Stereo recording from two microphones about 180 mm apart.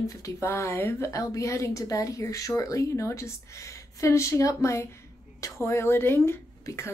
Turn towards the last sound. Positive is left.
turn(degrees=15)  # may be behind; listen again after turning